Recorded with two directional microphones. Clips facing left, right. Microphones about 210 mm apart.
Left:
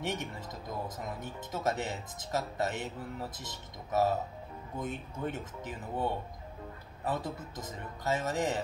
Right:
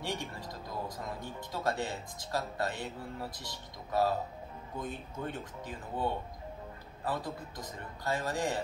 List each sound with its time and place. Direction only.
0.0 s speech: 20° left (ahead or behind)
7.1 s speech: 20° left (ahead or behind)